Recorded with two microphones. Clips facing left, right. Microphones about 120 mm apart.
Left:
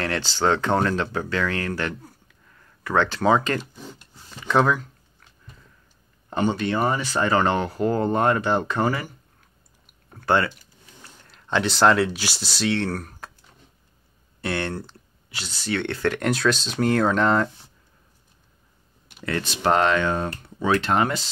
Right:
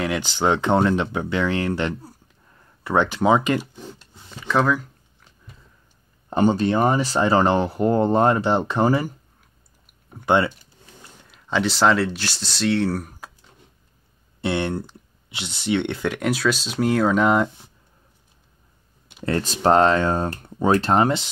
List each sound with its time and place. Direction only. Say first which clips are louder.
0.0 s speech: right 1 dB; 15° right (ahead or behind)
4.5 s speech: even; centre (ahead or behind)
6.3 s speech: right 4 dB; 40° right (ahead or behind)
8.8 s speech: right 5 dB; 40° right (ahead or behind)
10.0 s speech: right 2 dB; 15° right (ahead or behind)
11.2 s speech: right 1 dB; centre (ahead or behind)
14.4 s speech: right 4 dB; 20° right (ahead or behind)
16.1 s speech: left 1 dB; 5° right (ahead or behind)
19.2 s speech: right 4 dB; 35° right (ahead or behind)